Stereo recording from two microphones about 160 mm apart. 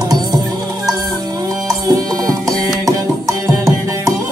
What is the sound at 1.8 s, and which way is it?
Music, 20° right (ahead or behind).